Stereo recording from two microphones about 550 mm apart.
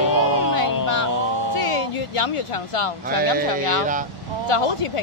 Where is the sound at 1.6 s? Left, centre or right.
Left.